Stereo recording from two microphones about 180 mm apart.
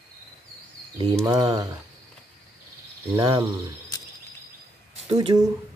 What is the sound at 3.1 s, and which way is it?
Speech, 20° right (ahead or behind).